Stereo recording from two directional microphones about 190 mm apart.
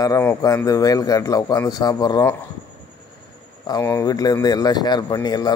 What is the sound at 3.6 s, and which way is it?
A man's voice, 15° left (ahead or behind).